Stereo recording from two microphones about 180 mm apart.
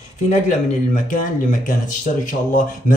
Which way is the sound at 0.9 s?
50° left (ahead or behind).